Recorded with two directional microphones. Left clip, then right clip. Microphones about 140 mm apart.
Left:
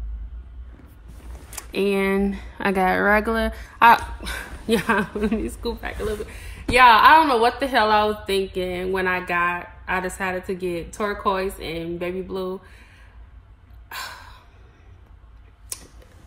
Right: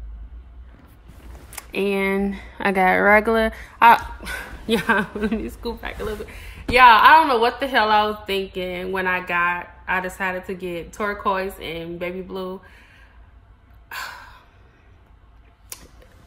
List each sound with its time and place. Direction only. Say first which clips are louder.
1.5 s speech: even; 15° right (ahead or behind)
3.8 s a woman's voice: right 1 dB; 10° right (ahead or behind)
13.8 s gasp: right 1 dB; 5° right (ahead or behind)
15.7 s a sound: left 2 dB; 10° right (ahead or behind)